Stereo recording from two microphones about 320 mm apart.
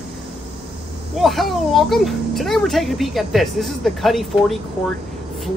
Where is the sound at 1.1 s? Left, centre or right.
Centre.